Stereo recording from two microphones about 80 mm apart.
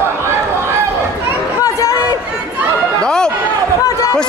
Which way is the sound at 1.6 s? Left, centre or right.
Left.